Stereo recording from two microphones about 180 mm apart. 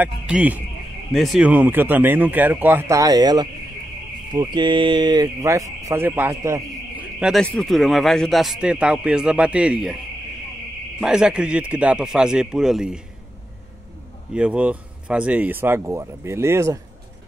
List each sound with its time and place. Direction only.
0.0 s a man's voice: 10° right (ahead or behind)
11.0 s a man's voice: 5° right (ahead or behind)
14.3 s speech: 5° right (ahead or behind)